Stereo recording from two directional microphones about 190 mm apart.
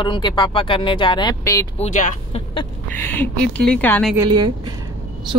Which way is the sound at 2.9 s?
10° left (ahead or behind).